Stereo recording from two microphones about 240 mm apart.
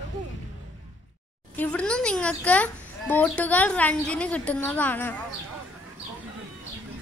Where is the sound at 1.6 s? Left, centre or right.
Centre.